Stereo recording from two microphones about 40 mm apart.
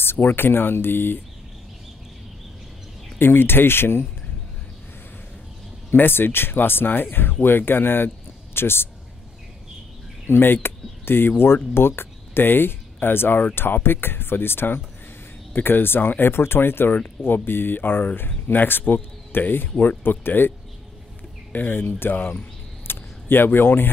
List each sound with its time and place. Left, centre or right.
0.0 s speech: left
3.2 s speech: left
5.9 s speech: left
8.5 s speech: left
10.2 s speech: left
22.8 s a sound: left